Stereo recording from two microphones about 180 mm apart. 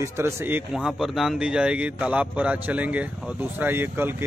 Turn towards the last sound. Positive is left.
turn(degrees=-10)  # may be behind; listen again after turning